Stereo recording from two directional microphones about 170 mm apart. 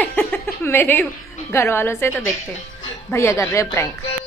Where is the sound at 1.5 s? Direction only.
15° left (ahead or behind).